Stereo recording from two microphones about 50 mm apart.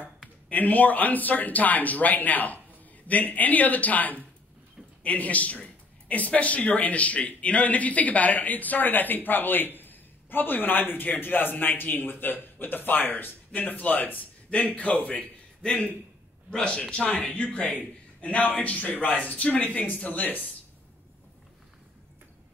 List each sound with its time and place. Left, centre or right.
0.5 s speech: left
15.6 s a man's voice: centre; by 20.4 s left